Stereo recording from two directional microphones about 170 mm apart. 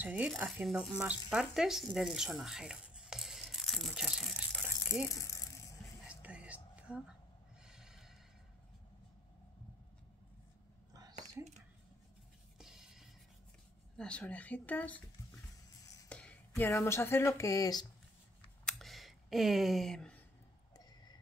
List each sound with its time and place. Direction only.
0.0 s zipper: 10° right (ahead or behind)
5.2 s rattle: 20° left (ahead or behind)
6.0 s whispering: 5° right (ahead or behind)
7.6 s a sound: 5° right (ahead or behind)
10.9 s whispering: 20° right (ahead or behind)
12.5 s music: 5° right (ahead or behind)
13.9 s speech: 5° left (ahead or behind)
16.1 s speech: 5° left (ahead or behind)
18.7 s a sound: centre (ahead or behind)